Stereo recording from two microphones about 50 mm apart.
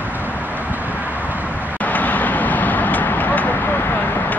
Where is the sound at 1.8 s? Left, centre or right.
Left.